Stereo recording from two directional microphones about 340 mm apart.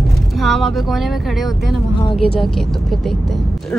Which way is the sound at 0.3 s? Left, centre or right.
Centre.